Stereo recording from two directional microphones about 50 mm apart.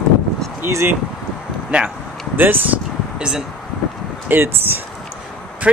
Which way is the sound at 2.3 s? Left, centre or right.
Right.